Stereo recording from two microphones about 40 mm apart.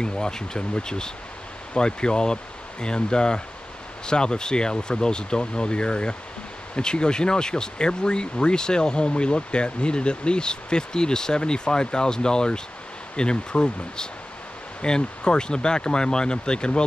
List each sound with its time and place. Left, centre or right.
0.0 s speech: centre